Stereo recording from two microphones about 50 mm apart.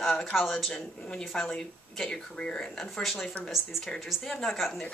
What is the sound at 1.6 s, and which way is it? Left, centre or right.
Speech, centre.